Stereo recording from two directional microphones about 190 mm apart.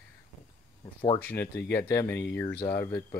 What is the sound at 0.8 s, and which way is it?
Speech, 25° left (ahead or behind).